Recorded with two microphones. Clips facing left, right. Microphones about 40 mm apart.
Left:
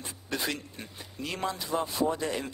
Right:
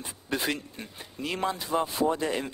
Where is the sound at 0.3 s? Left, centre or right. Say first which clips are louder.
Right 3 dB; centre.